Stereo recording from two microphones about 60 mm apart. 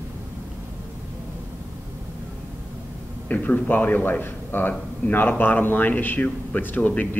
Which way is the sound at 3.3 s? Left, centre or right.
Left.